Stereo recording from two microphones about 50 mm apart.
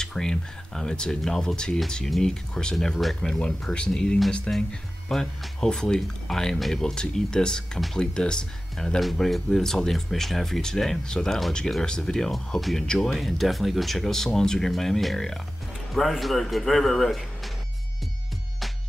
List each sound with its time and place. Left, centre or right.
0.0 s speech: centre
3.2 s speech: centre